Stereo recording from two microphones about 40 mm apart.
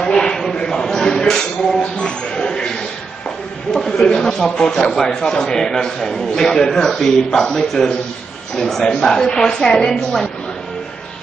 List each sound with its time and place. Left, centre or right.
0.0 s a sound: centre
1.8 s speech: left
3.7 s a man's voice: centre
4.0 s speech: left
4.3 s a man's voice: centre